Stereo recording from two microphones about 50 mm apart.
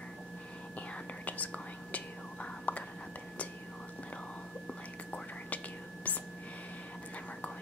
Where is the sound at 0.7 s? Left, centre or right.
Left.